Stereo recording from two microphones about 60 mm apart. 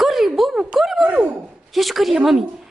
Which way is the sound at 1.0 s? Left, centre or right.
Right.